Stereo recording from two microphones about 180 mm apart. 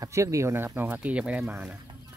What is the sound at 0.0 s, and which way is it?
Speech, 15° right (ahead or behind).